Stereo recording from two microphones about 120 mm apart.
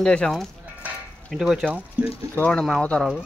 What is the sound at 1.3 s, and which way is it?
Speech, centre (ahead or behind).